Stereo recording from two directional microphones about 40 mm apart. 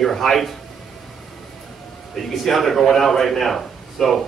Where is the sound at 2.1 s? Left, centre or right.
Centre.